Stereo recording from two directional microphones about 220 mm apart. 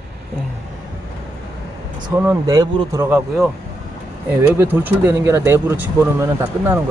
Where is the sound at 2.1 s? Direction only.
15° right (ahead or behind).